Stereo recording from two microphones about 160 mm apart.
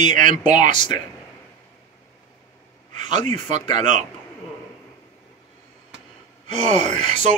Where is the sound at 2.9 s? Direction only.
45° right (ahead or behind).